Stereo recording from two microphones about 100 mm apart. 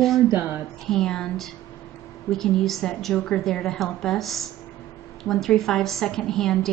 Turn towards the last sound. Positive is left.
turn(degrees=5)  # may be behind; listen again after turning